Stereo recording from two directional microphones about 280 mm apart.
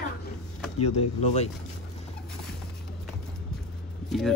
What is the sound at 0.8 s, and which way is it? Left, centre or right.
Speech, left.